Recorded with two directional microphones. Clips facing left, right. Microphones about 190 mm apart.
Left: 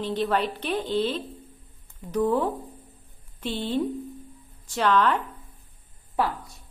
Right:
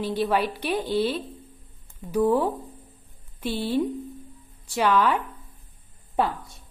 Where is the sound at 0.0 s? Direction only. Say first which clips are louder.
Right 1 dB; 10° right (ahead or behind).